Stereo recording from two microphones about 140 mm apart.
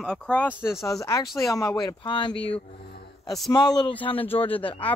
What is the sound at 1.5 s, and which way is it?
Speech, 25° left (ahead or behind).